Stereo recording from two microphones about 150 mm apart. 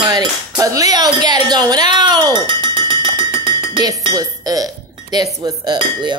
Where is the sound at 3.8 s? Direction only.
25° right (ahead or behind).